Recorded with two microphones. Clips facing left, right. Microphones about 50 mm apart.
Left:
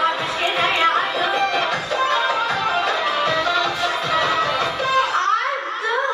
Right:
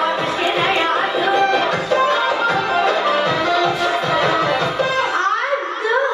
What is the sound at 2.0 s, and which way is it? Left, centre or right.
Music, right.